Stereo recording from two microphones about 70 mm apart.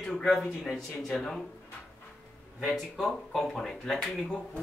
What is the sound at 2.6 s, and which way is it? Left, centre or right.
Speech, centre.